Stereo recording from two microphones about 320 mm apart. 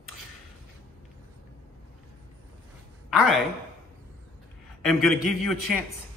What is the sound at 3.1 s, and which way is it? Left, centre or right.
Speech, centre.